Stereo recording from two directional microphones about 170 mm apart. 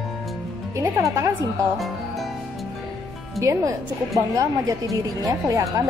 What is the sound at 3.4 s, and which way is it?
Speech, 15° right (ahead or behind).